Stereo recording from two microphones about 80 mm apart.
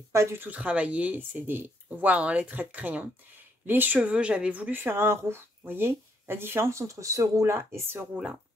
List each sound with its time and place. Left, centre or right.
0.1 s speech: right
0.5 s speech: centre
8.1 s speech: centre